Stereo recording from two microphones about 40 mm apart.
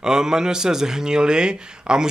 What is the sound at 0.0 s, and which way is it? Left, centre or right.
A man's voice, centre.